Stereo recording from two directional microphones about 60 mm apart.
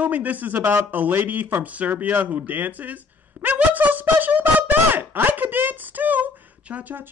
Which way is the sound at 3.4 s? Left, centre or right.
Right.